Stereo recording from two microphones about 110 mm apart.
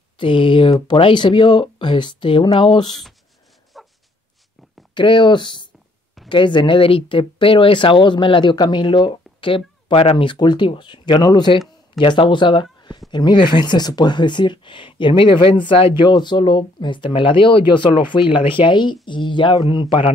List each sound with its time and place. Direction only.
0.2 s speech: 50° left (ahead or behind)
3.8 s a sound: centre (ahead or behind)
4.9 s speech: 45° left (ahead or behind)